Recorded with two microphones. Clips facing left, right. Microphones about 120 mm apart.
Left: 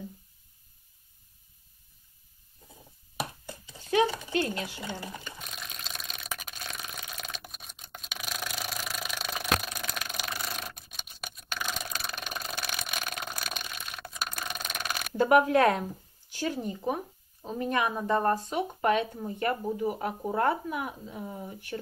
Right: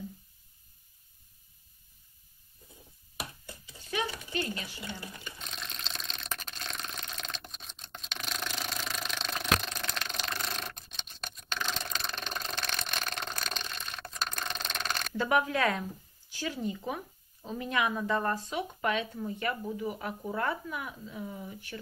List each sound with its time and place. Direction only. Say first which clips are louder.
3.9 s speech: left 8 dB; 65° left (ahead or behind)
5.4 s a sound: even; 5° left (ahead or behind)
15.1 s speech: left 7 dB; 50° left (ahead or behind)
19.0 s speech: even; 30° left (ahead or behind)
19.7 s speech: left 5 dB; 40° left (ahead or behind)